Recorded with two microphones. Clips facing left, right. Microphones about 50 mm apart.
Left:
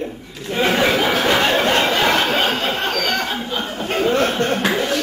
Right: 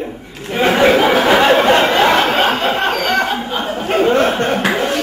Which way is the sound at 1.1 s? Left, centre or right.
Right.